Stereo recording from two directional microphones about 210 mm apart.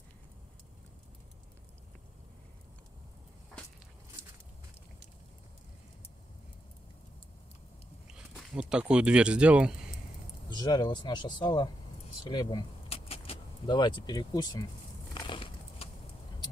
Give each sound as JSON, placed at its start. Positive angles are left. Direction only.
{"t": 8.1, "sound": "speech", "side_deg": -5}
{"t": 10.5, "sound": "speech", "side_deg": 20}
{"t": 15.2, "sound": "a sound", "side_deg": 25}